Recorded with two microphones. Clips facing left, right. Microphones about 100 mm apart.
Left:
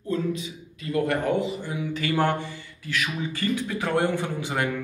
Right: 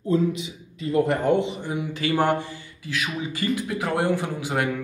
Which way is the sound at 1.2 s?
20° right (ahead or behind).